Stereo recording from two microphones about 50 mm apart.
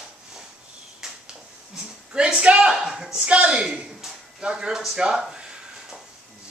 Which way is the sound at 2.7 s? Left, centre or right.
Centre.